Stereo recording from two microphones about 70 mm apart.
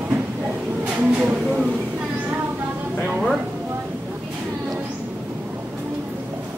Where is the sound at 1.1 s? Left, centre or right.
Centre.